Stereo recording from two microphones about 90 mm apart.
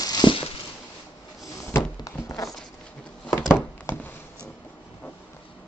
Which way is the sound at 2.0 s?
40° left (ahead or behind).